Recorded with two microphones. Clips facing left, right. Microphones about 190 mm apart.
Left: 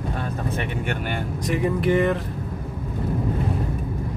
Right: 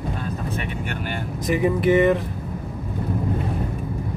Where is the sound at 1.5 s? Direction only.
5° right (ahead or behind).